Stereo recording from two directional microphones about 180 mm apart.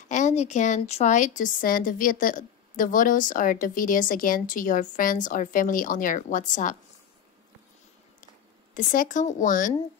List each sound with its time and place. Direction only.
0.1 s a woman's voice: 40° left (ahead or behind)
8.7 s a woman's voice: 45° left (ahead or behind)